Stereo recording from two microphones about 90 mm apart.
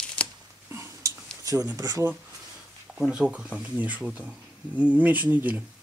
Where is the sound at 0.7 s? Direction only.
40° right (ahead or behind).